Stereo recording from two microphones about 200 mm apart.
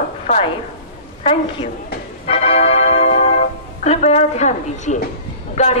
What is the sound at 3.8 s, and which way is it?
A man's voice, 35° left (ahead or behind).